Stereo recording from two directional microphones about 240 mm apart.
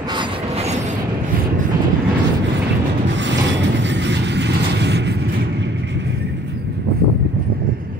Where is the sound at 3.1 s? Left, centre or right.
Right.